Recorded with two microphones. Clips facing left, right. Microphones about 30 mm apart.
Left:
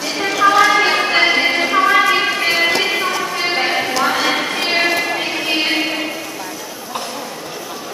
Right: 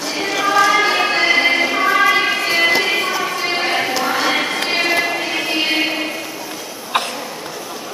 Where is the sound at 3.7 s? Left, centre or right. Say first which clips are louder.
Left 1 dB; centre.